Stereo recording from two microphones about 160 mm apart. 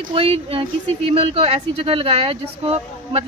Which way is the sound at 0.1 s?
35° right (ahead or behind).